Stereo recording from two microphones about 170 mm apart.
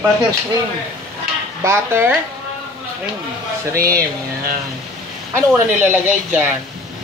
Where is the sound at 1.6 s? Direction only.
15° right (ahead or behind).